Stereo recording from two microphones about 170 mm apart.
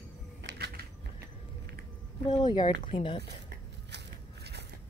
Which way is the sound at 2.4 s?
25° left (ahead or behind).